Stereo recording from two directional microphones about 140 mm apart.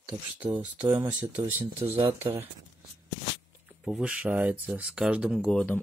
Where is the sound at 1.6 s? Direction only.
40° right (ahead or behind).